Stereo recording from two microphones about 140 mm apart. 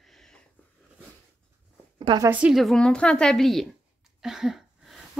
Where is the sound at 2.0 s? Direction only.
35° right (ahead or behind).